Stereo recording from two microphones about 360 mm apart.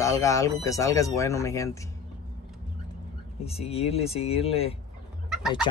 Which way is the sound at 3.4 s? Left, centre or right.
Centre.